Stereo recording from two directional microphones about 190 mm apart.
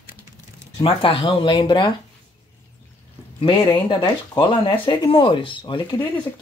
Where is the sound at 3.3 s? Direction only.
25° left (ahead or behind).